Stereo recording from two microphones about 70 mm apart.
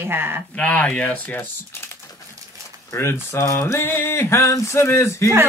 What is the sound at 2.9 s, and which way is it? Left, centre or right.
Speech, left.